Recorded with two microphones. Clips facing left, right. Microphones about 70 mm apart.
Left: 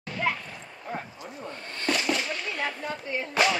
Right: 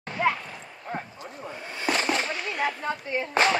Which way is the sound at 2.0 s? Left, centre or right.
Right.